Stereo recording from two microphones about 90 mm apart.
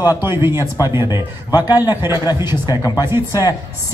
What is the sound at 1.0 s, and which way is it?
Speech, 50° left (ahead or behind).